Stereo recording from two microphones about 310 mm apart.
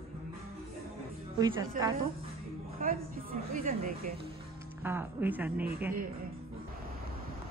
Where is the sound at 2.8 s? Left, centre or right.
Right.